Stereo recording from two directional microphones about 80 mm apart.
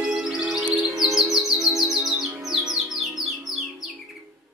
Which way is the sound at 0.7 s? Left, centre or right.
Centre.